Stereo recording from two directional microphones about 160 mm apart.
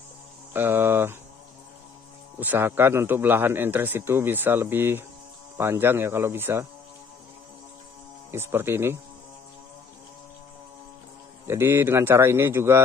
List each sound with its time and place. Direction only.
0.5 s a man's voice: 15° right (ahead or behind)
2.4 s a man's voice: 10° right (ahead or behind)
8.3 s a man's voice: 15° right (ahead or behind)
11.4 s a man's voice: 15° right (ahead or behind)